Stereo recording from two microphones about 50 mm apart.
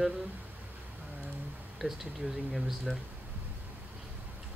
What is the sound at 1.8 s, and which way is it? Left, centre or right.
Speech, centre.